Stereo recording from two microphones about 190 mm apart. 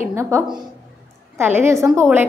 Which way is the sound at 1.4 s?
10° right (ahead or behind).